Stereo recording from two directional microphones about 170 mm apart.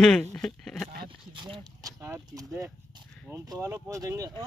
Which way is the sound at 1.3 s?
25° right (ahead or behind).